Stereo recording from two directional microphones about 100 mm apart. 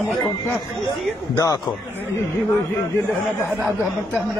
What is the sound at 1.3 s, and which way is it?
Speech, 35° left (ahead or behind).